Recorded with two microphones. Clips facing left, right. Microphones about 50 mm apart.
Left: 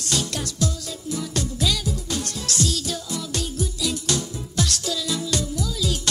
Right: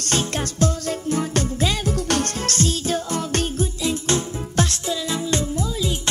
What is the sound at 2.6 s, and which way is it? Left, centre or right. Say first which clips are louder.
Music: right 4 dB; right.